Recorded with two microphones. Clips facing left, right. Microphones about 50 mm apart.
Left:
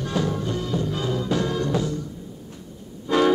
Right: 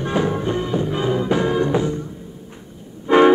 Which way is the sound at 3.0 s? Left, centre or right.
Right.